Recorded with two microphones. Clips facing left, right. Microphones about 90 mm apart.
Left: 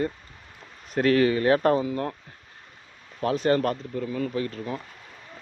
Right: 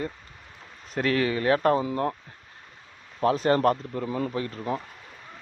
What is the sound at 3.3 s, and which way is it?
Speech, 35° right (ahead or behind).